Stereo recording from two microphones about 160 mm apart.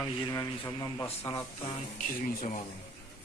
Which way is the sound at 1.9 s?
55° left (ahead or behind).